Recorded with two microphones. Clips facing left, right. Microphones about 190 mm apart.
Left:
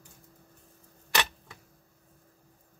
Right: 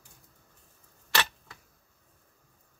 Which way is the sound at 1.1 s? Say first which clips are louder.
Even; 20° left (ahead or behind).